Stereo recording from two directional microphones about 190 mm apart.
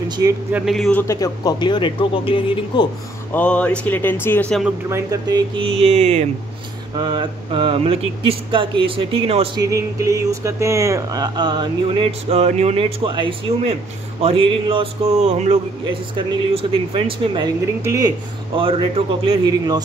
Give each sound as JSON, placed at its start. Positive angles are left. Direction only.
{"t": 0.5, "sound": "speech", "side_deg": -5}
{"t": 1.0, "sound": "speech", "side_deg": 15}
{"t": 3.3, "sound": "speech", "side_deg": 5}
{"t": 4.8, "sound": "speech", "side_deg": -15}
{"t": 7.0, "sound": "speech", "side_deg": -25}
{"t": 9.6, "sound": "speech", "side_deg": -15}
{"t": 18.6, "sound": "speech", "side_deg": -30}